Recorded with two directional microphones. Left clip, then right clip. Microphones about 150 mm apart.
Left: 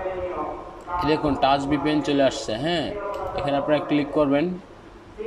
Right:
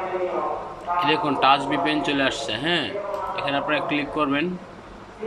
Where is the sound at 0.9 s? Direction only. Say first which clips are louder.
Right 1 dB; 35° left (ahead or behind).